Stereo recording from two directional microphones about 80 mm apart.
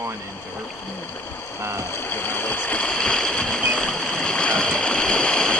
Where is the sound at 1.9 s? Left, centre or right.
Left.